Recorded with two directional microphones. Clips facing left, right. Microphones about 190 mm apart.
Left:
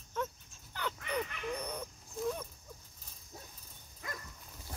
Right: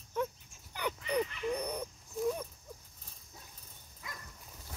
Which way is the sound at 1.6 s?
15° right (ahead or behind).